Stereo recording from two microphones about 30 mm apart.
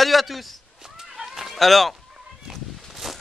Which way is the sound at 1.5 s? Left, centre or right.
Centre.